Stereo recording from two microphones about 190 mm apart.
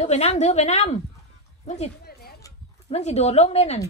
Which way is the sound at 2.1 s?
55° left (ahead or behind).